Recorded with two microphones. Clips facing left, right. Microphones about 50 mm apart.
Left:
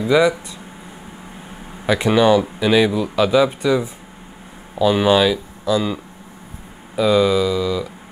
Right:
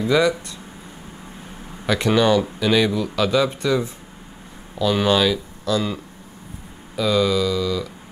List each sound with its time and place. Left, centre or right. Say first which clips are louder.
0.0 s speech: left 3 dB; centre
1.9 s speech: left 3 dB; centre
7.0 s speech: left 4 dB; centre